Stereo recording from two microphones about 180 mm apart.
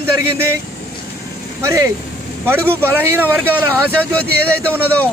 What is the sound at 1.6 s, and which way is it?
Speech, 15° right (ahead or behind).